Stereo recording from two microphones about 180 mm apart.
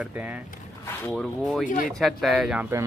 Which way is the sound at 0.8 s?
10° left (ahead or behind).